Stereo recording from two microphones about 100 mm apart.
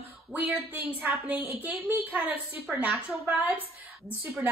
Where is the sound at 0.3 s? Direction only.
15° right (ahead or behind).